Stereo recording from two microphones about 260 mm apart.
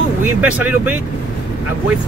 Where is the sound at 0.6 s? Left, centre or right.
Centre.